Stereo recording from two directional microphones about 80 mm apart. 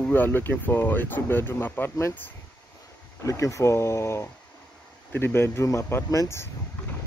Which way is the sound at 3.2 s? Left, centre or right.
Left.